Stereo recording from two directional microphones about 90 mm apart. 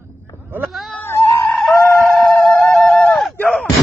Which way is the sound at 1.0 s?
25° left (ahead or behind).